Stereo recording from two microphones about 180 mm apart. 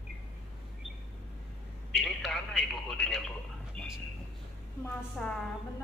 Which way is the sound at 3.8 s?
5° left (ahead or behind).